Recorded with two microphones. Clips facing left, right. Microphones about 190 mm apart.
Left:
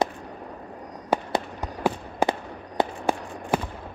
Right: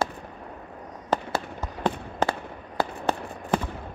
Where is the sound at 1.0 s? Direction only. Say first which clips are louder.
Left 2 dB; 10° left (ahead or behind).